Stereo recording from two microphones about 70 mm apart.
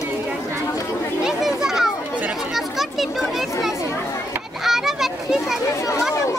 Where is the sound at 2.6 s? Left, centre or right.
Centre.